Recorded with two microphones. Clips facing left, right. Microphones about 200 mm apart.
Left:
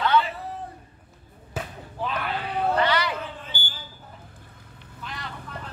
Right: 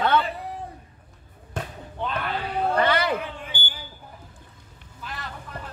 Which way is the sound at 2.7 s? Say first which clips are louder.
Right 3 dB; 50° right (ahead or behind).